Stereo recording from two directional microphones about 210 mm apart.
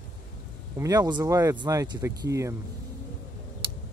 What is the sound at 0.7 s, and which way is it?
Speech, 15° right (ahead or behind).